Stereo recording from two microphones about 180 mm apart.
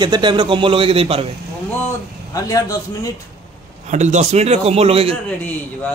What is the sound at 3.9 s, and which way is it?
A man's voice, 40° right (ahead or behind).